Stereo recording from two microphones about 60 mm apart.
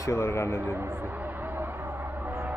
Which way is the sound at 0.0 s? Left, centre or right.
Left.